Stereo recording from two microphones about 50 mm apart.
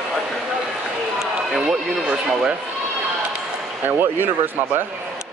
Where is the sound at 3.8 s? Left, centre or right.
Right.